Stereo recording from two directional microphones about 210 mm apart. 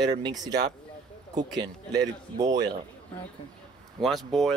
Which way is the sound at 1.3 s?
20° right (ahead or behind).